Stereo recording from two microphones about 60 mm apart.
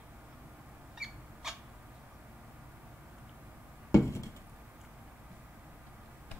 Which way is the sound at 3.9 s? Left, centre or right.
Left.